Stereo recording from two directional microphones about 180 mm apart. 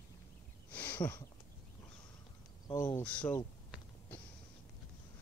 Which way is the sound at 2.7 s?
15° left (ahead or behind).